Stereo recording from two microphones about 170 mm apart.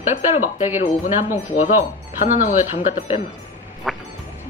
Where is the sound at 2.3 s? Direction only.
50° left (ahead or behind).